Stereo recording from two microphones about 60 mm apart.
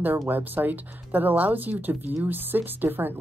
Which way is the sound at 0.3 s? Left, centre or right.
Right.